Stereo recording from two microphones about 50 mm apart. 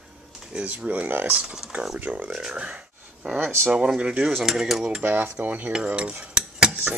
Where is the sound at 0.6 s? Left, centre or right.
Right.